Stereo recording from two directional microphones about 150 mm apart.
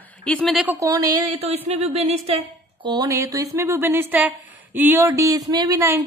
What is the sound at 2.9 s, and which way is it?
Speech, 25° right (ahead or behind).